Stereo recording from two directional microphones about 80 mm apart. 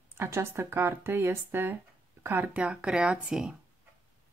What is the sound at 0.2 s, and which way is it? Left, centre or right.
Speech, right.